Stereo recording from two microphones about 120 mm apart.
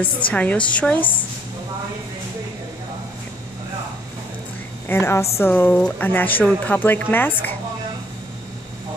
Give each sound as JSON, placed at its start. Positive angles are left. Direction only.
{"t": 0.3, "sound": "speech", "side_deg": 10}
{"t": 4.8, "sound": "a woman's voice", "side_deg": 20}